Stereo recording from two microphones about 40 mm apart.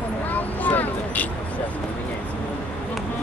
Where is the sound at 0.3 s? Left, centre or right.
Left.